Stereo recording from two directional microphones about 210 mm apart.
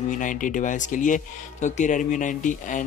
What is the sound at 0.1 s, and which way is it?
Speech, 40° left (ahead or behind).